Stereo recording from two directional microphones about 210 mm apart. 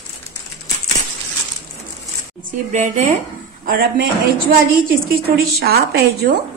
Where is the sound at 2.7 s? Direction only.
35° right (ahead or behind).